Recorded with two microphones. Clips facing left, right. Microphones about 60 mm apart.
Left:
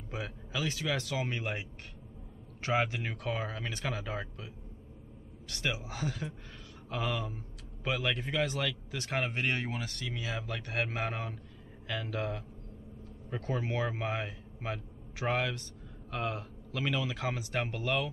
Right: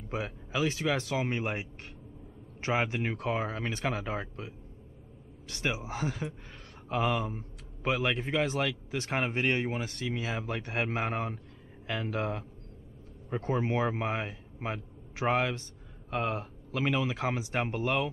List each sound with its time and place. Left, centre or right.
0.1 s a man's voice: right